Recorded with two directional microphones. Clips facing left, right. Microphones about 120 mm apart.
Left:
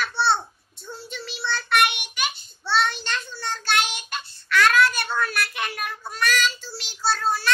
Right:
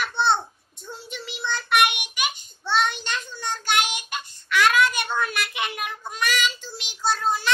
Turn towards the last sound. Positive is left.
turn(degrees=-15)  # may be behind; listen again after turning